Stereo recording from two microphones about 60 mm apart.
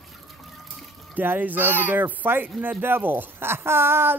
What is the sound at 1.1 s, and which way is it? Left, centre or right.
Speech, right.